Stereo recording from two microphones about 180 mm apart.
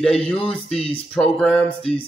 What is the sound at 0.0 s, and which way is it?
Speech, 5° left (ahead or behind).